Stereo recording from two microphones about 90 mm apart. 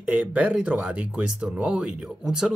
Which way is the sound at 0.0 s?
15° right (ahead or behind).